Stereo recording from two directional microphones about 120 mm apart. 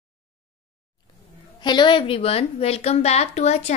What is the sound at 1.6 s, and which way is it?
A woman's voice, 40° left (ahead or behind).